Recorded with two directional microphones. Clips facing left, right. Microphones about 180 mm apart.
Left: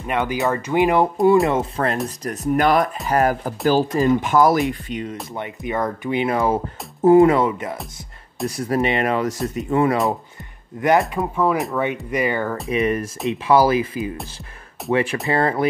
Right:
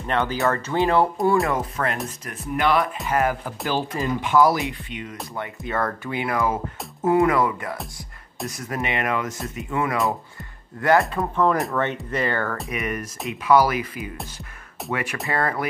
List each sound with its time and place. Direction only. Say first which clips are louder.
0.0 s speech: left 1 dB; 10° left (ahead or behind)
1.5 s speech: left 4 dB; 30° left (ahead or behind)
5.3 s speech: left 1 dB; 20° left (ahead or behind)
8.5 s speech: left 8 dB; 30° left (ahead or behind)
10.8 s speech: left 2 dB; 20° left (ahead or behind)
11.3 s speech: left 1 dB; 5° left (ahead or behind)
12.6 s speech: left 8 dB; 30° left (ahead or behind)